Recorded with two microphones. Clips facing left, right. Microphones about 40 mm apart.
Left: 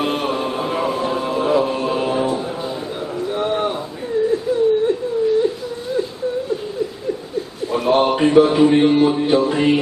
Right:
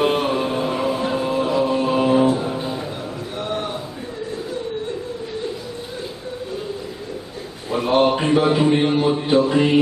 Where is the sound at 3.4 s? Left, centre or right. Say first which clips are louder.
Left 5 dB; centre.